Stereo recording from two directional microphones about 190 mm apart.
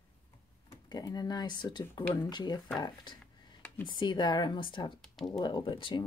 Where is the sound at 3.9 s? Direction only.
25° left (ahead or behind).